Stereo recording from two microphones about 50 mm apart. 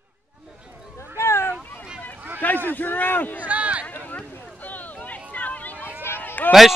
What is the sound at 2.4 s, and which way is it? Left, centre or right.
A man's voice, left.